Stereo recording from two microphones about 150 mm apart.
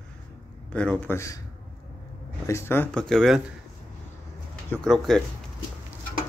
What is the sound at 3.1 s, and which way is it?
Speech, centre (ahead or behind).